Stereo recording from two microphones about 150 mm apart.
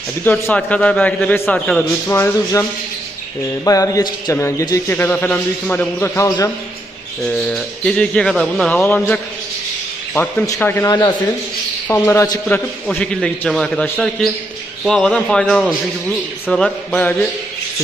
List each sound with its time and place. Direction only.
0.2 s a man's voice: 10° left (ahead or behind)
3.6 s a man's voice: 20° left (ahead or behind)
7.2 s a man's voice: 5° left (ahead or behind)